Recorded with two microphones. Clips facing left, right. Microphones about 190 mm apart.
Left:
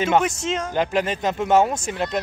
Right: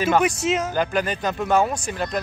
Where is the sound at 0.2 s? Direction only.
5° right (ahead or behind).